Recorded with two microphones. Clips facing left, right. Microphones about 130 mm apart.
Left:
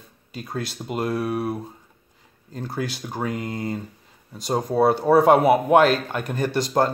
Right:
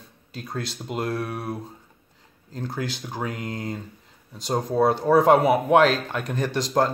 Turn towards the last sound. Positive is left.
turn(degrees=5)  # may be behind; listen again after turning